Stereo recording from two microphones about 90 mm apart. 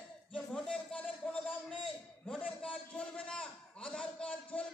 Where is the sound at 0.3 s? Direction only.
5° left (ahead or behind).